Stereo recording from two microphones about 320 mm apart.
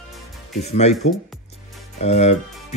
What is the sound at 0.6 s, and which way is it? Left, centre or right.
Speech, centre.